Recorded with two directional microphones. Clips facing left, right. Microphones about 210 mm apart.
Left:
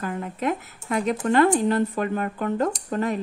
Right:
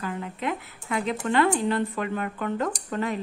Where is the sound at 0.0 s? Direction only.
45° left (ahead or behind).